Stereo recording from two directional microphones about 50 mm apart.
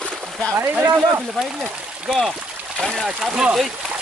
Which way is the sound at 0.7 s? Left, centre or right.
Right.